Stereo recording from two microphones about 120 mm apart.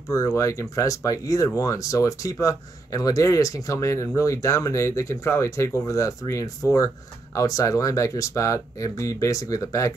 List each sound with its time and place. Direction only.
0.1 s speech: 25° left (ahead or behind)